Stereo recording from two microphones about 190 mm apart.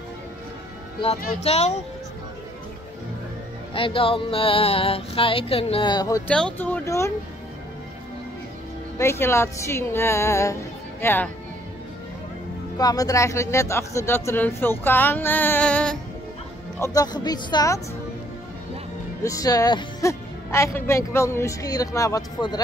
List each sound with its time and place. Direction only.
1.4 s speech: 35° left (ahead or behind)
3.7 s music: 30° left (ahead or behind)
6.2 s speech: 5° left (ahead or behind)
8.9 s speech: 15° left (ahead or behind)
12.7 s speech: 20° left (ahead or behind)
16.8 s music: 20° left (ahead or behind)
19.2 s speech: 20° left (ahead or behind)